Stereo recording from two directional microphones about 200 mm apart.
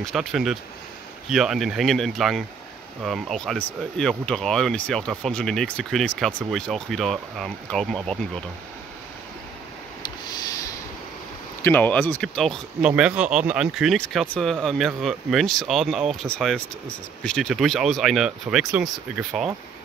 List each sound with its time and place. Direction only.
0.0 s speech: centre (ahead or behind)
10.3 s a sound: 15° left (ahead or behind)
11.6 s speech: 10° left (ahead or behind)